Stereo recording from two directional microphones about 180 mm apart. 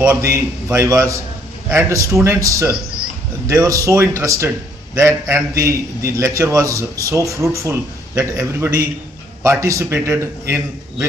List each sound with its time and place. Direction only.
0.0 s a man's voice: 15° right (ahead or behind)